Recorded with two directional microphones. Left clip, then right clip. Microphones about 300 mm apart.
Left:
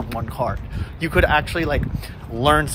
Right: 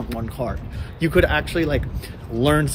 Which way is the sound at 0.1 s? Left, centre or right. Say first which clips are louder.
Left 4 dB; centre.